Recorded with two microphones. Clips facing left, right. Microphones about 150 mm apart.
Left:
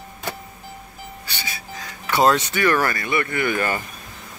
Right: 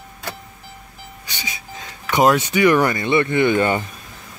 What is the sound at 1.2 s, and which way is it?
Speech, 15° right (ahead or behind).